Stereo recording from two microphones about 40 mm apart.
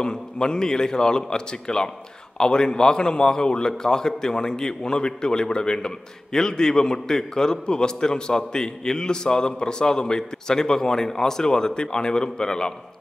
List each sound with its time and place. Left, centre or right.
0.0 s a man's voice: centre